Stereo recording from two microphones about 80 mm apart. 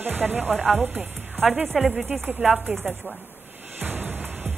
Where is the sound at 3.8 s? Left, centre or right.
Right.